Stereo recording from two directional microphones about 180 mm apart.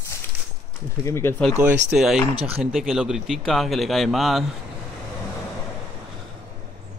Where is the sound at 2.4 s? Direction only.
30° right (ahead or behind).